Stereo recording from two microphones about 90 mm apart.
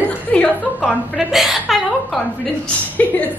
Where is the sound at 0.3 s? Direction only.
10° left (ahead or behind).